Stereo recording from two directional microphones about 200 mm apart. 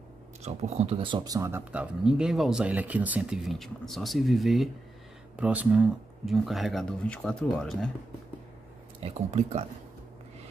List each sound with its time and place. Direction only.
0.4 s speech: 30° right (ahead or behind); by 7.9 s 5° left (ahead or behind)
9.0 s speech: 30° right (ahead or behind)